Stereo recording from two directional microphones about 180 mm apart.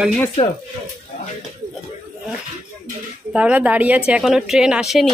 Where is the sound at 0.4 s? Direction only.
35° left (ahead or behind).